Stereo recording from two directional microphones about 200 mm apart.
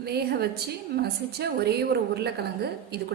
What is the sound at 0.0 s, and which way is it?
A woman's voice, 55° right (ahead or behind).